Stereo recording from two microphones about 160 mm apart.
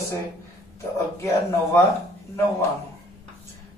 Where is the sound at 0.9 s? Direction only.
15° left (ahead or behind).